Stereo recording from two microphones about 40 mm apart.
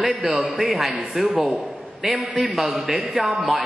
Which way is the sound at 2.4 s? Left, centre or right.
Centre.